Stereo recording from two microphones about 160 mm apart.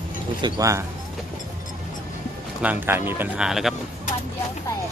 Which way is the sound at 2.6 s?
10° right (ahead or behind).